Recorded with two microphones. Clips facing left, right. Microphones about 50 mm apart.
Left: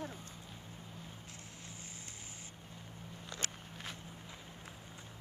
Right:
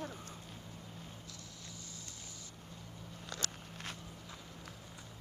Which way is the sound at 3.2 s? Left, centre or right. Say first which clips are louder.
Right 1 dB; left.